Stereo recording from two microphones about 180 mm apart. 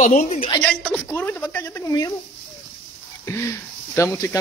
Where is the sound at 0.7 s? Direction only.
5° left (ahead or behind).